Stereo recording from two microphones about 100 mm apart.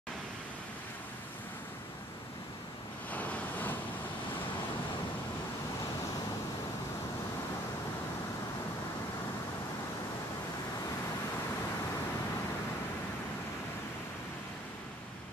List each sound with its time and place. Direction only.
3.1 s waves: 15° left (ahead or behind)